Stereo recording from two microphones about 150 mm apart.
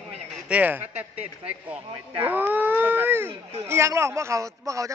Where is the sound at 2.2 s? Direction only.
10° right (ahead or behind).